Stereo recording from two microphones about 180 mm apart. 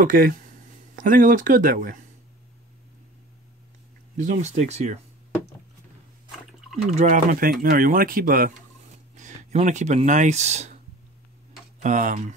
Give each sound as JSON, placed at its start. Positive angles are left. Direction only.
{"t": 0.0, "sound": "speech", "side_deg": -50}
{"t": 4.2, "sound": "speech", "side_deg": -45}
{"t": 7.0, "sound": "speech", "side_deg": -45}
{"t": 11.8, "sound": "speech", "side_deg": -45}